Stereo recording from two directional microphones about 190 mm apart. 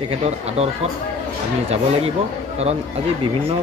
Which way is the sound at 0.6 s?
30° right (ahead or behind).